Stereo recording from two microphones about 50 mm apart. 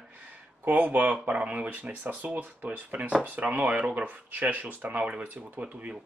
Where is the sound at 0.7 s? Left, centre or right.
Right.